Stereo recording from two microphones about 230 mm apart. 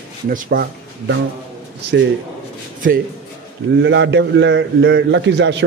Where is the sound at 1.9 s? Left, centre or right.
Right.